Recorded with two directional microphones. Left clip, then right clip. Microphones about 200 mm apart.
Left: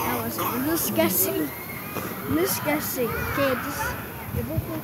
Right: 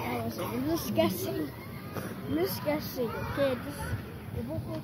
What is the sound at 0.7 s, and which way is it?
Speech, 10° left (ahead or behind).